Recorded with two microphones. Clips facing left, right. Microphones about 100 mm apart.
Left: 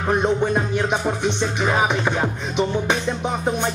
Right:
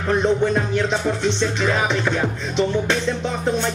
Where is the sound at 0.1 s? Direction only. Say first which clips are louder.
Right 1 dB; 15° left (ahead or behind).